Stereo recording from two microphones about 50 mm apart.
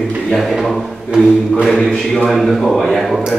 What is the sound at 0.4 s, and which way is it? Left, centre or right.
Speech, centre.